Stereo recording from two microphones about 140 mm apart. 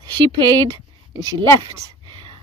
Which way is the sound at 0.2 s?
35° right (ahead or behind).